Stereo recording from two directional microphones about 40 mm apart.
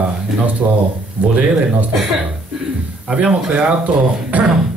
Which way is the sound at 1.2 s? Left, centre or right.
Right.